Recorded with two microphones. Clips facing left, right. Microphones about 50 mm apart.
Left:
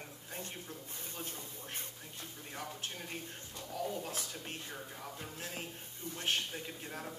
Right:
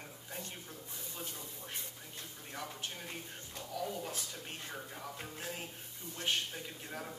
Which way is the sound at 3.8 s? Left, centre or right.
Centre.